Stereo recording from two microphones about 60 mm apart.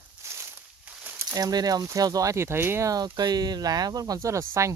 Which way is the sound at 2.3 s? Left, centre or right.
Right.